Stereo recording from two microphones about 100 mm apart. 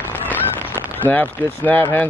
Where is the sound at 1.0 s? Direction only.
15° left (ahead or behind).